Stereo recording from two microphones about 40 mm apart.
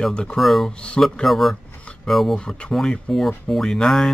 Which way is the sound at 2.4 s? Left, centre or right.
Left.